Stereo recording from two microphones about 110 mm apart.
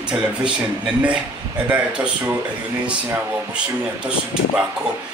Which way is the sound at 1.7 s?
10° right (ahead or behind).